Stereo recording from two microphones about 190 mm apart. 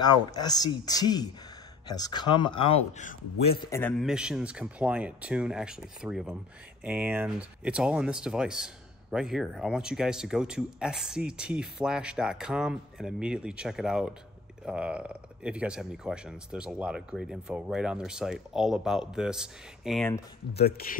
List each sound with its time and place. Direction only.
0.0 s speech: 20° left (ahead or behind)
3.9 s speech: 5° right (ahead or behind)
20.5 s speech: 55° left (ahead or behind)